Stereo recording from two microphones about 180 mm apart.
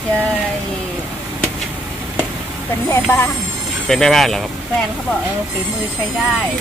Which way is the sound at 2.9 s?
10° left (ahead or behind).